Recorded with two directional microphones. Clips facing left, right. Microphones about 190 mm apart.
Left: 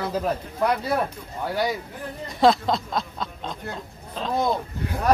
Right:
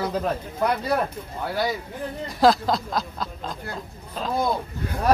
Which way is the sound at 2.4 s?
Centre (ahead or behind).